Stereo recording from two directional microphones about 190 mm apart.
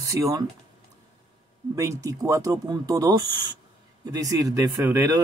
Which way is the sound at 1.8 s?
15° right (ahead or behind).